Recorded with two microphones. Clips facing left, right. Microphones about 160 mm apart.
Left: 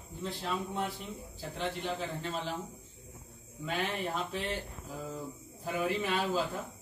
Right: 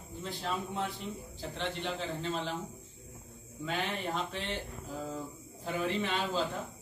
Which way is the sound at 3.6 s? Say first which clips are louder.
Left 1 dB; 5° left (ahead or behind).